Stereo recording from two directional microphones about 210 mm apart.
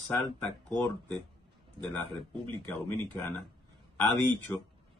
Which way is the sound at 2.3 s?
25° right (ahead or behind).